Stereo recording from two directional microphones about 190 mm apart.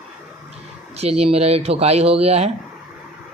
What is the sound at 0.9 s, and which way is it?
Speech, 30° right (ahead or behind).